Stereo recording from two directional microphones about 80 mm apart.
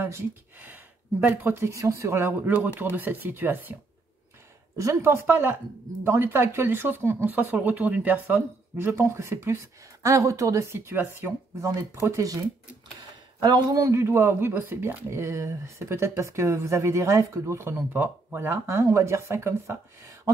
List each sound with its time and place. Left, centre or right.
0.6 s speech: right
1.6 s speech: right
2.4 s speech: centre
4.7 s speech: right
13.4 s a man's voice: right
13.9 s speech: right